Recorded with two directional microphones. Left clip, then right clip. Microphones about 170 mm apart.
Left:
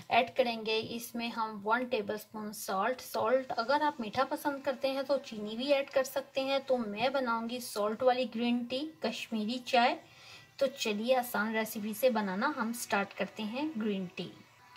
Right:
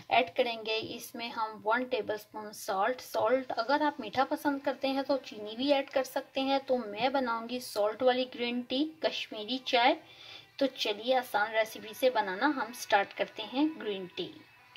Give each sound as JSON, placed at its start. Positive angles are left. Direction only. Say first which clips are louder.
{"t": 0.4, "sound": "a woman's voice", "louder": "even", "side_deg": -45}